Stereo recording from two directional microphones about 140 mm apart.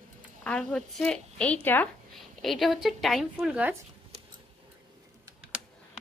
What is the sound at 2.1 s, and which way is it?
A woman's voice, centre (ahead or behind).